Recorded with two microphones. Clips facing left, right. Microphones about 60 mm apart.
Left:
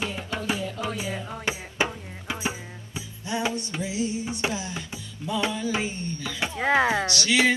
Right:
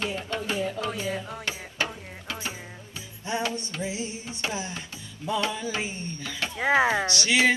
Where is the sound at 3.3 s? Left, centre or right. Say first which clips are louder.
Left 2 dB; right.